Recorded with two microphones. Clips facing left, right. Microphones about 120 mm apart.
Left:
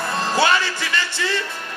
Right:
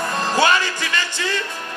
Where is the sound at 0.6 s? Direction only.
50° right (ahead or behind).